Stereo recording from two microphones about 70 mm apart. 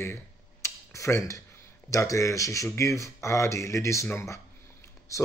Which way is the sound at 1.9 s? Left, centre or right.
Left.